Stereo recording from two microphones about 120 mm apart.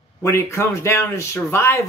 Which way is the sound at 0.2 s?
25° left (ahead or behind).